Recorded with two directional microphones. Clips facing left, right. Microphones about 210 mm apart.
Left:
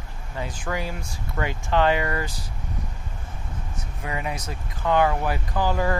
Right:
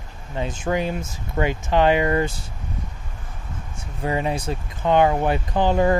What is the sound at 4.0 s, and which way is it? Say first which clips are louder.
Speech: right 7 dB; 30° right (ahead or behind).